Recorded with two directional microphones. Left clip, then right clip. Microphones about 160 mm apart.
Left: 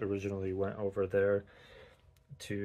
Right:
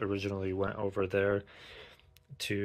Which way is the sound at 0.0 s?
Centre (ahead or behind).